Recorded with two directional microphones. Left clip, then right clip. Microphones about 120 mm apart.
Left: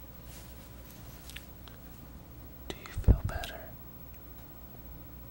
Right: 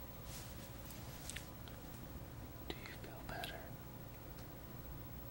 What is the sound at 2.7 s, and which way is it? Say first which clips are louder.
Whispering: left 12 dB; 45° left (ahead or behind).